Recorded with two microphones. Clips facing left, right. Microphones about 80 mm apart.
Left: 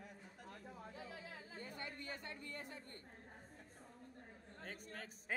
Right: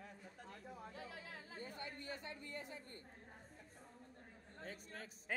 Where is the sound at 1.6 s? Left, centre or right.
Left.